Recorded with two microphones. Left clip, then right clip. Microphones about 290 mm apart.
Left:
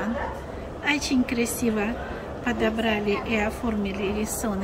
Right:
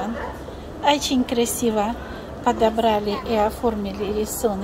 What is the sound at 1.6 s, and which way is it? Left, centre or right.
A woman's voice, right.